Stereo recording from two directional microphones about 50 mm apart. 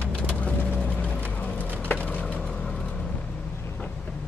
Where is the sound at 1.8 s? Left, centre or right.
Left.